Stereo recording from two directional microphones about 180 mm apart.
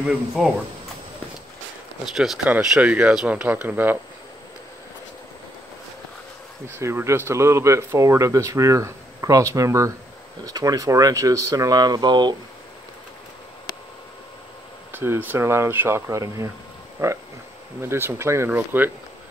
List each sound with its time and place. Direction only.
0.0 s speech: 5° right (ahead or behind)
2.1 s speech: centre (ahead or behind)
6.8 s speech: 15° right (ahead or behind)
14.9 s speech: 10° right (ahead or behind)